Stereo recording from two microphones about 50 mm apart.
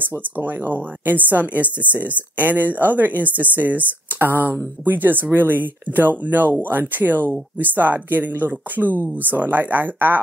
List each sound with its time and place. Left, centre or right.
0.2 s speech: right